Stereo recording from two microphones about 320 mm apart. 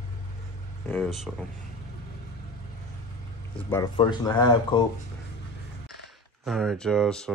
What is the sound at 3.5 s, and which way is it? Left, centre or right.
Speech, centre.